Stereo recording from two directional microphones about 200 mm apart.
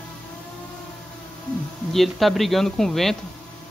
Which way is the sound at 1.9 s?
Centre (ahead or behind).